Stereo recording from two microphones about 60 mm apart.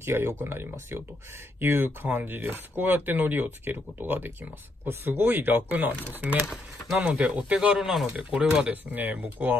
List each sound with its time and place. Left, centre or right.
0.0 s speech: right
7.5 s speech: centre
8.9 s speech: right